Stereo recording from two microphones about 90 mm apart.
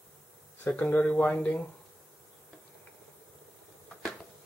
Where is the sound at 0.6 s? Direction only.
20° left (ahead or behind).